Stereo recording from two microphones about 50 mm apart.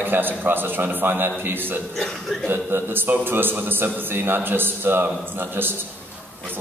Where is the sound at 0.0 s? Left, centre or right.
Right.